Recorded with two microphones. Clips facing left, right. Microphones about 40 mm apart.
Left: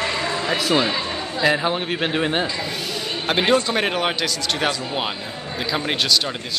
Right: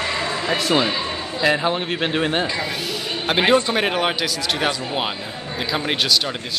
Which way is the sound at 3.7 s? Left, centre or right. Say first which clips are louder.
Right 1 dB; centre.